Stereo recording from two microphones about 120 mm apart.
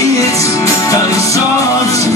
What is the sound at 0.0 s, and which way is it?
Music, 30° left (ahead or behind).